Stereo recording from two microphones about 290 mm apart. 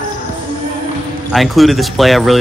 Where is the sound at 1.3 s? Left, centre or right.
Centre.